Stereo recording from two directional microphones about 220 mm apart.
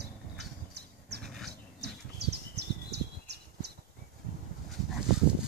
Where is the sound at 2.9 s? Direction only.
50° right (ahead or behind).